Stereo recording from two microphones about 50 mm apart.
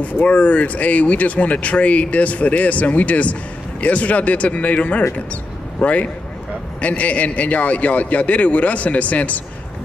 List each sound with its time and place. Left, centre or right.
0.0 s speech: left